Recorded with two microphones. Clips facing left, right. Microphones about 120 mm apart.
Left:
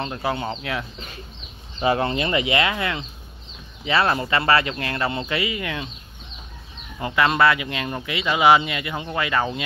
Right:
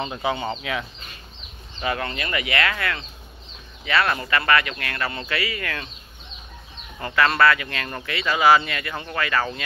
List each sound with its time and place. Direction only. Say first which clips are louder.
0.0 s speech: even; centre (ahead or behind)
1.8 s speech: left 6 dB; 25° left (ahead or behind)
7.0 s speech: even; 15° left (ahead or behind)